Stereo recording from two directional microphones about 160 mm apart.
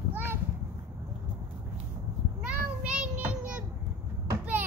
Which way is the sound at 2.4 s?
5° right (ahead or behind).